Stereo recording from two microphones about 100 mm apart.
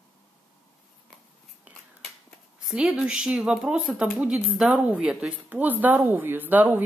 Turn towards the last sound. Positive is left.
turn(degrees=-20)  # may be behind; listen again after turning